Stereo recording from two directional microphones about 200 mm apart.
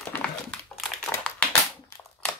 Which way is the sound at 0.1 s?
5° left (ahead or behind).